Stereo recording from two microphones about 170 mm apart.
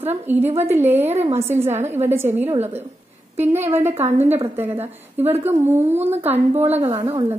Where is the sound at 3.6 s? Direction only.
15° right (ahead or behind).